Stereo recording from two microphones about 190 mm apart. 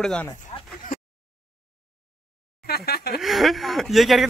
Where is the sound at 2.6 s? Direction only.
55° left (ahead or behind).